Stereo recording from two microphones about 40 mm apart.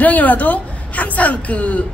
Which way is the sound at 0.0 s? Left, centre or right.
Left.